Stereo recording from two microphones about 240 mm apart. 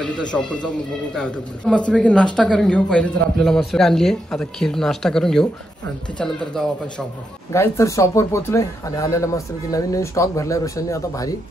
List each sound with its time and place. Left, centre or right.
0.0 s a man's voice: centre